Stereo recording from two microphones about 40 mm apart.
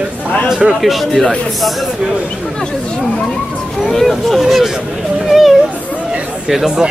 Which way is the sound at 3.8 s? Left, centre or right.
Centre.